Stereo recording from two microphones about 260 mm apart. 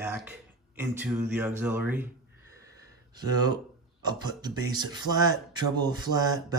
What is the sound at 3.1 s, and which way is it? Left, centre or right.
Speech, centre.